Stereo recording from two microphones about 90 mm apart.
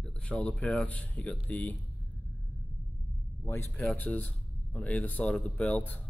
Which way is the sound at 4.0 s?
15° left (ahead or behind).